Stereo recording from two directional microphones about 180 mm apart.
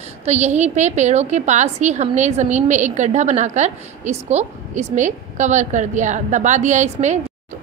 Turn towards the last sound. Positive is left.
turn(degrees=-40)  # may be behind; listen again after turning